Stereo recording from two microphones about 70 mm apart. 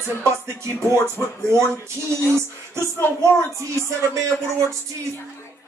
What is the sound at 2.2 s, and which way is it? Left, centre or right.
Music, right.